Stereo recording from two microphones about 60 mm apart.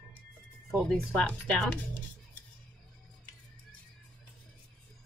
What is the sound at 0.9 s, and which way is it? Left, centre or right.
Speech, left.